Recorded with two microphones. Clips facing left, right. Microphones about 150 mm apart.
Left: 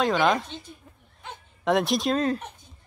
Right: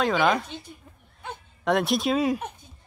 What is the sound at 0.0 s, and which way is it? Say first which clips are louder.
Speech: even; centre (ahead or behind).